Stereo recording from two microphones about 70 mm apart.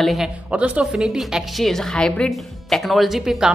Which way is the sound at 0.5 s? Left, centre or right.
Centre.